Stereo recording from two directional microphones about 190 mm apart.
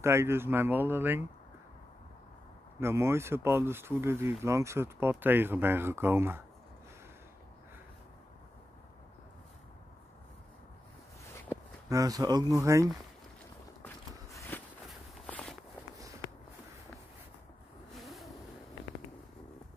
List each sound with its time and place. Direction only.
0.0 s speech: 15° right (ahead or behind)
2.8 s speech: 15° right (ahead or behind)
11.9 s speech: 20° right (ahead or behind)
13.8 s walk: 10° left (ahead or behind)
17.9 s vehicle: centre (ahead or behind)